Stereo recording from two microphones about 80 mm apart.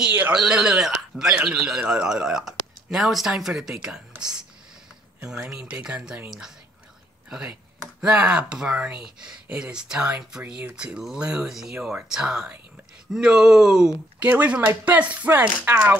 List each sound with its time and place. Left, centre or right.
0.0 s speech: centre
5.5 s speech: centre
7.2 s speech: centre
14.2 s speech: centre